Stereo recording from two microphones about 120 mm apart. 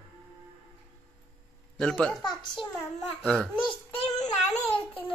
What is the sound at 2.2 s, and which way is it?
Speech, 35° left (ahead or behind).